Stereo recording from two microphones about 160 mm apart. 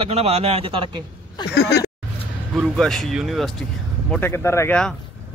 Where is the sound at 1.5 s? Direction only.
90° left.